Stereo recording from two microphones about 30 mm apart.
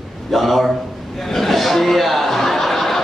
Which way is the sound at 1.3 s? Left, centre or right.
Centre.